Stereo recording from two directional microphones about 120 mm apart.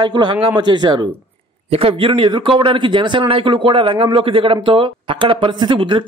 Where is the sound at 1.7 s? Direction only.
50° right (ahead or behind).